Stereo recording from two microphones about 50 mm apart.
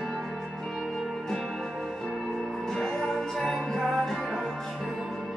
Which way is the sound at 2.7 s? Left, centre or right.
Centre.